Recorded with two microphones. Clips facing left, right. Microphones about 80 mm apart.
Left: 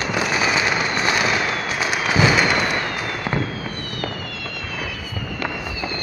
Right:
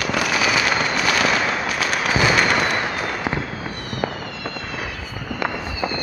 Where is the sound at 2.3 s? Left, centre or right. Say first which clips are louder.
Even; centre.